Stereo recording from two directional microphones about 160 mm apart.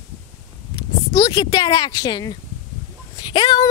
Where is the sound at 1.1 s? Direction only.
20° left (ahead or behind).